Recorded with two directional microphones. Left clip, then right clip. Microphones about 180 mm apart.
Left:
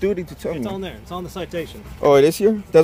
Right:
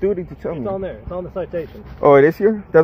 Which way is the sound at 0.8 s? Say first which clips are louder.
Right 4 dB; 85° left.